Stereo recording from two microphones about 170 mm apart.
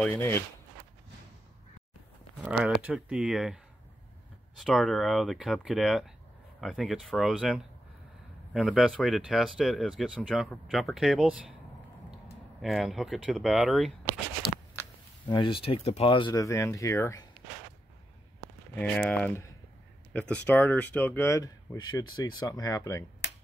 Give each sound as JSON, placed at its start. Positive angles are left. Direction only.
{"t": 0.0, "sound": "speech", "side_deg": 10}
{"t": 2.4, "sound": "speech", "side_deg": -10}
{"t": 4.6, "sound": "speech", "side_deg": 0}
{"t": 12.6, "sound": "speech", "side_deg": 0}
{"t": 15.2, "sound": "speech", "side_deg": 30}
{"t": 18.8, "sound": "speech", "side_deg": 10}